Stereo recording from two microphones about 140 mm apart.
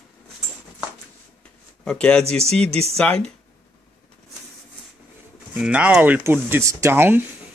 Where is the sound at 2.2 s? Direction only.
45° right (ahead or behind).